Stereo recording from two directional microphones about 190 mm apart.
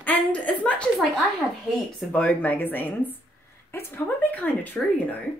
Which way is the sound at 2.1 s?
10° left (ahead or behind).